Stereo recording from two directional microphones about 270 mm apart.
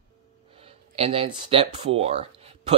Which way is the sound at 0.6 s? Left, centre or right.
Right.